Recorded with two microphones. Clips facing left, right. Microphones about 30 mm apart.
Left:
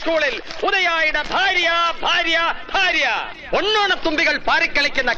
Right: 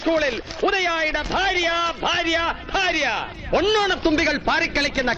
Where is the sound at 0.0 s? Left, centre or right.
Centre.